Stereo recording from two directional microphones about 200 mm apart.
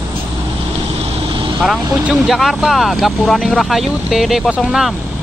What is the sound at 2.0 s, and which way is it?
Speech, 5° right (ahead or behind).